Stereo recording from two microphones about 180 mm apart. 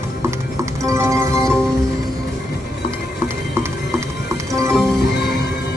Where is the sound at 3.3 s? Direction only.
15° right (ahead or behind).